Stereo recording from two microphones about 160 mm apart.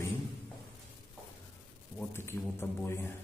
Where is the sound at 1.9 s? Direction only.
15° left (ahead or behind).